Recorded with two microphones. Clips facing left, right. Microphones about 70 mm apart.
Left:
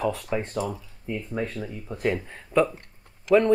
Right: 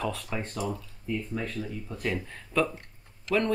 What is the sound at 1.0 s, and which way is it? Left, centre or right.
Speech, left.